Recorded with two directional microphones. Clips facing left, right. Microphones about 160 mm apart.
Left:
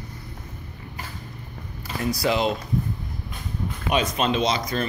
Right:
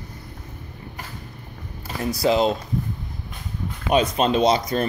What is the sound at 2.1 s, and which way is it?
Speech, 30° right (ahead or behind).